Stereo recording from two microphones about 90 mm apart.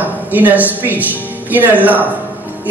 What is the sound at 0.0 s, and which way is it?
A woman's voice, 20° right (ahead or behind).